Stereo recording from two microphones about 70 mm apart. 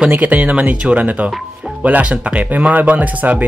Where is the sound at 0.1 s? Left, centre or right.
Right.